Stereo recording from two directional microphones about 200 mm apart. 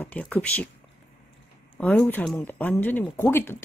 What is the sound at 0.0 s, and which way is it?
Speech, 5° left (ahead or behind).